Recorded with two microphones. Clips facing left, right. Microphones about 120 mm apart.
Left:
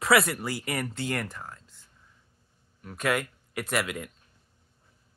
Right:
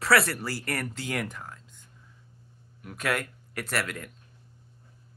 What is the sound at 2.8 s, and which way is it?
Speech, 5° right (ahead or behind).